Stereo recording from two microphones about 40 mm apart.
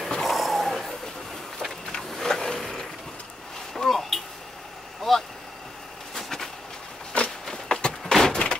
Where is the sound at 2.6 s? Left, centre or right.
Centre.